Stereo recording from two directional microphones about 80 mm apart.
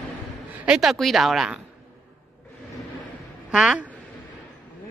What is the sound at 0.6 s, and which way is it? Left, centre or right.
Speech, centre.